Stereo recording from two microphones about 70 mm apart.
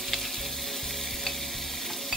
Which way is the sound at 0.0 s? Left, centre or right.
Centre.